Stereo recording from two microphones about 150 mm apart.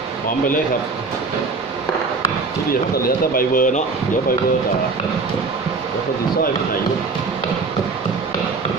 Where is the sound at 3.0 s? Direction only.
70° left (ahead or behind).